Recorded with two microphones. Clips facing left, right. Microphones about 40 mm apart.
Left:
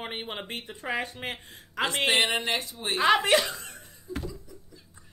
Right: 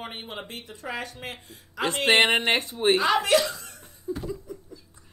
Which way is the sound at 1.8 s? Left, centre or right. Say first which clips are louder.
Even; left.